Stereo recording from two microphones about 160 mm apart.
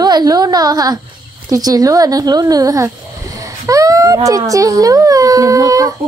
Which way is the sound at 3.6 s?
20° right (ahead or behind).